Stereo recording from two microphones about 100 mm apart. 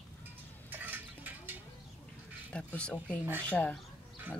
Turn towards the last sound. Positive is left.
turn(degrees=15)  # may be behind; listen again after turning